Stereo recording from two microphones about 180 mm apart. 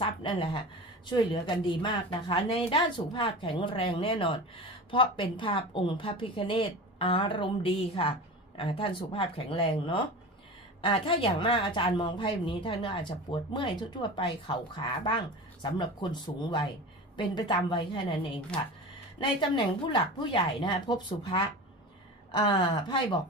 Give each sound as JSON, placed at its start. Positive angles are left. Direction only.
{"t": 0.0, "sound": "a woman's voice", "side_deg": 30}